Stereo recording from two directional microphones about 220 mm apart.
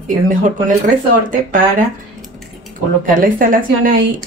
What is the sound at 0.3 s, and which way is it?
Speech, 35° right (ahead or behind).